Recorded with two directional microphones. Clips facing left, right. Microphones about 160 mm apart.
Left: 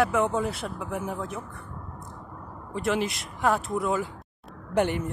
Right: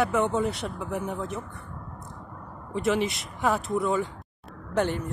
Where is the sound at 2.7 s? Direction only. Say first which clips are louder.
Right 2 dB; centre (ahead or behind).